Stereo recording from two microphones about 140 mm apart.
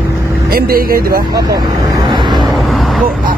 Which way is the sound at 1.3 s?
25° right (ahead or behind).